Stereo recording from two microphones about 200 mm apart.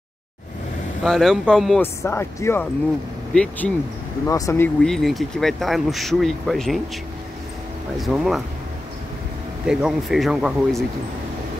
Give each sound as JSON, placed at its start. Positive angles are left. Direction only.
{"t": 1.0, "sound": "speech", "side_deg": 0}
{"t": 4.8, "sound": "speech", "side_deg": 0}
{"t": 8.0, "sound": "speech", "side_deg": 0}
{"t": 9.7, "sound": "speech", "side_deg": -5}